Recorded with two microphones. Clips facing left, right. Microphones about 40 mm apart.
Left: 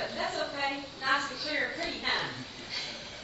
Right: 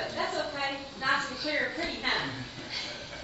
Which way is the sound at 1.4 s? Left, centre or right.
Centre.